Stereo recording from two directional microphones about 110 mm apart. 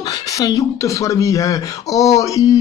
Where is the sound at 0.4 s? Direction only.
30° left (ahead or behind).